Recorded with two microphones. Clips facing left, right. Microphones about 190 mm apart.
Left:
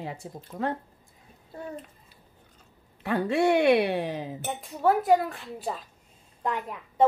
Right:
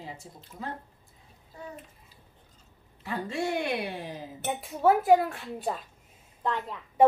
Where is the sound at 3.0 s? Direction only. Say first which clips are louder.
Left 7 dB; 65° left (ahead or behind).